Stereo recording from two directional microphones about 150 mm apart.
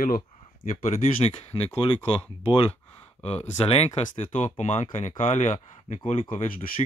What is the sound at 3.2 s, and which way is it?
Speech, 45° left (ahead or behind).